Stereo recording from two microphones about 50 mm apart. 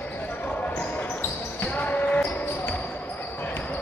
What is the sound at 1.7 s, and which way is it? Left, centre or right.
Basketball bounce, left.